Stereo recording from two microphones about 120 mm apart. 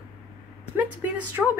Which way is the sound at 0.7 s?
15° right (ahead or behind).